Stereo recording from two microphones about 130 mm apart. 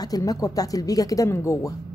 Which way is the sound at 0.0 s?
30° left (ahead or behind).